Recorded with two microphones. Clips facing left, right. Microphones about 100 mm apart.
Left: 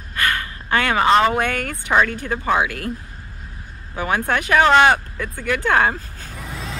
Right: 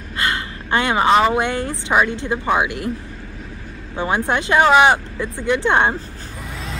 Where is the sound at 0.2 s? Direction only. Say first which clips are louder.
Even; 25° right (ahead or behind).